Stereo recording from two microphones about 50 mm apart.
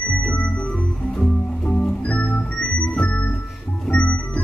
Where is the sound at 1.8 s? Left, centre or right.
Centre.